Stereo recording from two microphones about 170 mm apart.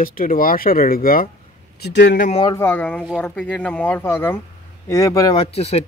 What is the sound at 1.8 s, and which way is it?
Speech, 90° left.